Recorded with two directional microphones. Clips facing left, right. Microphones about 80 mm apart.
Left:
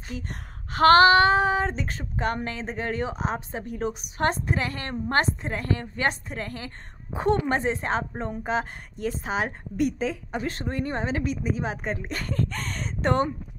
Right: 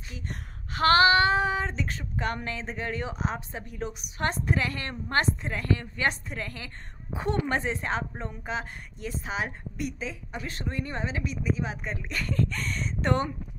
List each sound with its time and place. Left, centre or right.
0.1 s female singing: left
8.2 s a woman's voice: left